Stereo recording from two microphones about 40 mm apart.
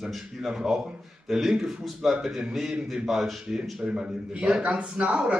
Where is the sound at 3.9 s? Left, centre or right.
Right.